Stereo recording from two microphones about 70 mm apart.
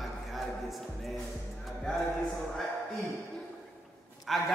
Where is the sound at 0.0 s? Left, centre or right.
Centre.